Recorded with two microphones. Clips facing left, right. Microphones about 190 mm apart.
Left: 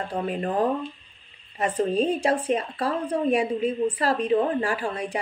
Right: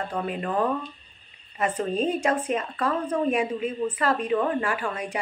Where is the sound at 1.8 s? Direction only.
35° left (ahead or behind).